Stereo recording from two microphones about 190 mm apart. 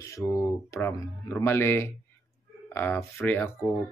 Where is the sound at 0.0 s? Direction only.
15° left (ahead or behind).